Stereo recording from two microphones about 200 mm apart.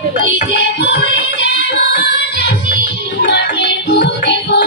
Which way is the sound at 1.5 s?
55° left (ahead or behind).